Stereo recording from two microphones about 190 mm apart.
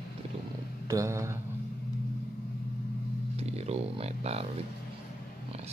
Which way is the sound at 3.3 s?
35° right (ahead or behind).